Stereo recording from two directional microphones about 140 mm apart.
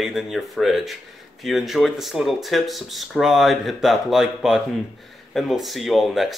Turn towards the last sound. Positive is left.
turn(degrees=0)  # may be behind; listen again after turning